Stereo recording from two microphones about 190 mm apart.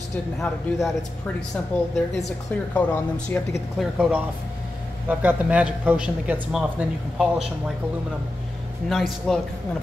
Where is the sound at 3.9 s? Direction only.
5° right (ahead or behind).